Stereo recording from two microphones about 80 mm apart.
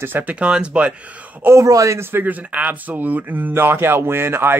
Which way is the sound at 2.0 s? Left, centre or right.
Right.